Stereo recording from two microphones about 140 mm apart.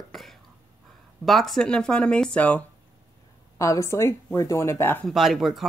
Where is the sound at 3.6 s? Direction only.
20° left (ahead or behind).